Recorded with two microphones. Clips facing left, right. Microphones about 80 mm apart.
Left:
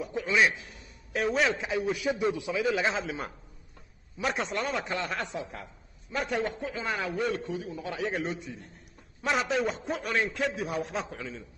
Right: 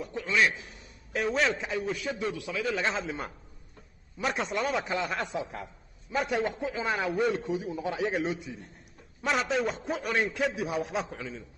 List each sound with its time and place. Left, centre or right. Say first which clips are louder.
0.0 s a man's voice: left 1 dB; centre
1.1 s a man's voice: left 1 dB; centre
2.8 s a man's voice: left 1 dB; centre
5.3 s a woman's voice: right 2 dB; centre
6.1 s a man's voice: right 2 dB; centre
6.4 s a man's voice: right 2 dB; centre
8.2 s a man's voice: right 2 dB; centre